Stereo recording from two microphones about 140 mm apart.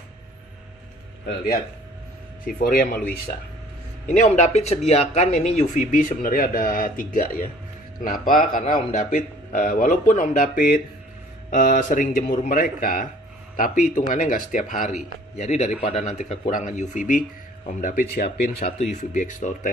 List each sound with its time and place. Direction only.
2.4 s speech: 90° left
4.2 s speech: 55° left (ahead or behind); by 7.4 s 85° left
8.0 s a man's voice: 75° left (ahead or behind); by 13.1 s 90° left
13.6 s a man's voice: 70° left (ahead or behind)
15.3 s a man's voice: 55° left (ahead or behind)
17.7 s speech: 80° left
18.6 s a man's voice: 50° left (ahead or behind)
18.9 s a man's voice: 65° left (ahead or behind)